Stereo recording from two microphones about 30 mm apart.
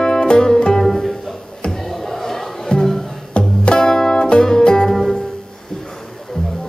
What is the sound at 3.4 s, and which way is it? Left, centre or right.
Music, left.